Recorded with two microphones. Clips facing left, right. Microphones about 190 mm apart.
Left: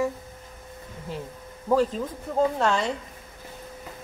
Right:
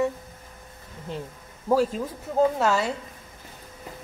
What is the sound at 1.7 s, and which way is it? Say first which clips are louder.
Speech: even; 10° right (ahead or behind).